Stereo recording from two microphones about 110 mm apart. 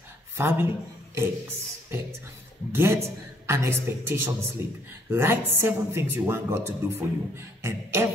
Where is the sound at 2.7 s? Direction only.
25° right (ahead or behind).